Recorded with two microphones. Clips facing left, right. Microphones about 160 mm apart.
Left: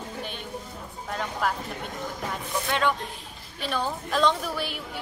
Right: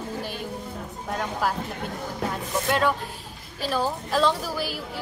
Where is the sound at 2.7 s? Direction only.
5° right (ahead or behind).